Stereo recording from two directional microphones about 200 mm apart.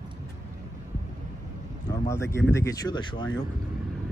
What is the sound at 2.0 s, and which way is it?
Speech, 15° left (ahead or behind).